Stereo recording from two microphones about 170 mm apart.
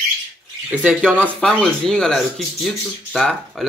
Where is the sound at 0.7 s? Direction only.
5° right (ahead or behind).